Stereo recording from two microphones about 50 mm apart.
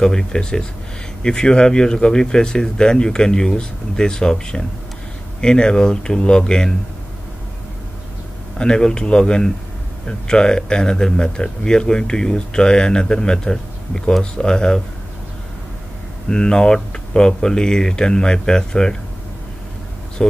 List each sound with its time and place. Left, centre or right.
0.0 s speech: centre
8.5 s speech: centre
16.3 s speech: centre
20.2 s speech: centre